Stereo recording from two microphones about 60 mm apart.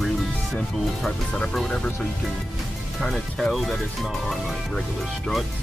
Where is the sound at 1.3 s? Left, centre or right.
Centre.